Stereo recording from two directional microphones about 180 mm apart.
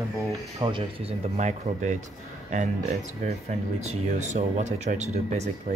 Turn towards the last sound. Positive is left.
turn(degrees=-40)  # may be behind; listen again after turning